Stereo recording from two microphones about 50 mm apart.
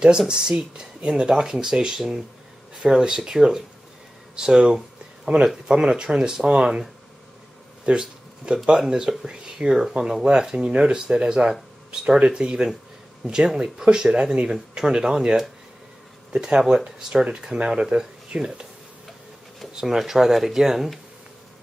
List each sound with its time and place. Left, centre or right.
0.3 s speech: centre
7.8 s a sound: centre
8.6 s speech: centre
19.7 s speech: centre